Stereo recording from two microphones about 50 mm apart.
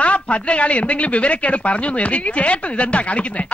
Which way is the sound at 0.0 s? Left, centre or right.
Left.